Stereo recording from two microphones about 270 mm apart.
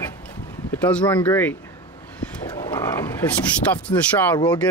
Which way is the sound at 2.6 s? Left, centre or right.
Centre.